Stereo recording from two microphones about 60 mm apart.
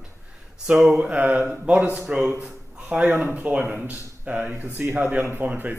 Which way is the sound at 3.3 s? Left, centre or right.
Right.